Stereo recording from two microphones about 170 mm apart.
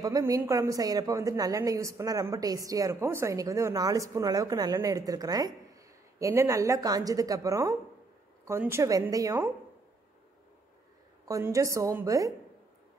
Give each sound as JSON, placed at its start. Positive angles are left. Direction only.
{"t": 0.0, "sound": "a woman's voice", "side_deg": -20}
{"t": 11.2, "sound": "a woman's voice", "side_deg": -20}